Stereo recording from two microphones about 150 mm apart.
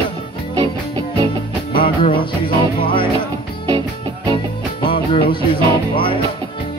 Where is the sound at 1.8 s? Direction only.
35° left (ahead or behind).